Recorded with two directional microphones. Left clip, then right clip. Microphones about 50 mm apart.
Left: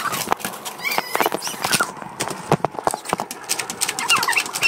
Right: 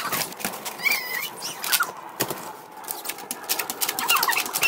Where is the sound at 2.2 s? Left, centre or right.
Right.